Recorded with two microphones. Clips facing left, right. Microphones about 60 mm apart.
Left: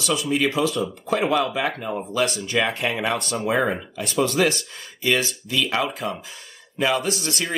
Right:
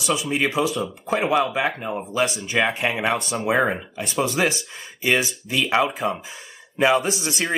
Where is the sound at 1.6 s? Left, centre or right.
Centre.